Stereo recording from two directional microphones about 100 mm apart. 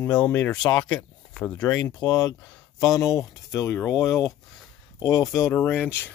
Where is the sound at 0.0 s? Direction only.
10° left (ahead or behind).